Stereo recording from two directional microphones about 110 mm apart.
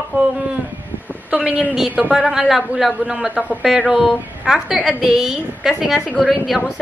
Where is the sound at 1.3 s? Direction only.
10° right (ahead or behind).